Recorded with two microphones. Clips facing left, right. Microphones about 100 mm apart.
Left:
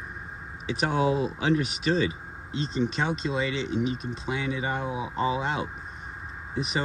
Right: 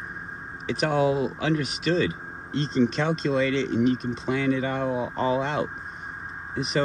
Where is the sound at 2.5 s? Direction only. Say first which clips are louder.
Right 5 dB; 10° left (ahead or behind).